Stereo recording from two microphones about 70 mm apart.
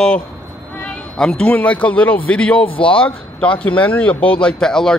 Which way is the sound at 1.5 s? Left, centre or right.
Centre.